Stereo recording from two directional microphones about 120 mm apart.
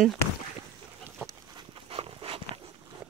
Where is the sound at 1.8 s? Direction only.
50° right (ahead or behind).